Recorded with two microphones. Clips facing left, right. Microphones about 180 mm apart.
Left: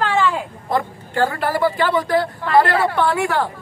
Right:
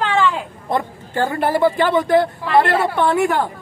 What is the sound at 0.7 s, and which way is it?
Speech, 20° right (ahead or behind).